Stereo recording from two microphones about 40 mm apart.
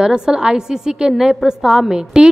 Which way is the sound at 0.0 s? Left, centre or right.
Centre.